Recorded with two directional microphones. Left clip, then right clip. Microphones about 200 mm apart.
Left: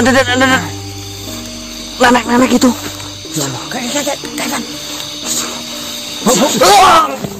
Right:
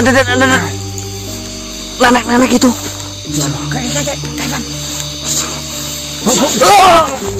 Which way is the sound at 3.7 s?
40° left (ahead or behind).